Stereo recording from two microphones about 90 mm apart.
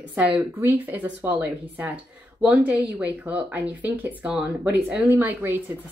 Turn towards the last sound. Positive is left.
turn(degrees=-20)  # may be behind; listen again after turning